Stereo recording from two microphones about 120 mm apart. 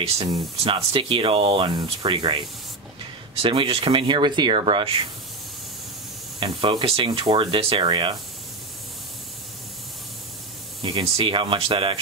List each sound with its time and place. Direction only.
0.7 s speech: 45° right (ahead or behind)
3.4 s speech: 45° right (ahead or behind)
6.4 s speech: 45° right (ahead or behind)
10.8 s speech: 45° right (ahead or behind)